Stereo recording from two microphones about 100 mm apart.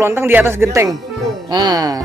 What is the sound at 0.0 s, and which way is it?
Speech, 25° right (ahead or behind).